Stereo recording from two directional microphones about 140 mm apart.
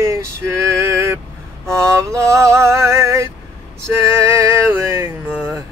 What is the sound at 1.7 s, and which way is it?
Music, 20° right (ahead or behind).